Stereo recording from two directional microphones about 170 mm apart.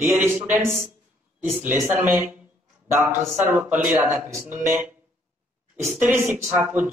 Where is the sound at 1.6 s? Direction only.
15° right (ahead or behind).